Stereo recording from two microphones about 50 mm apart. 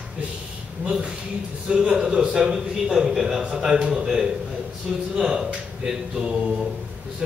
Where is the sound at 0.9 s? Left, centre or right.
Centre.